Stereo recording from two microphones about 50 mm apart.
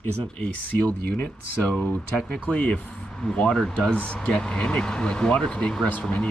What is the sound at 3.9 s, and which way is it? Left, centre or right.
Speech, left.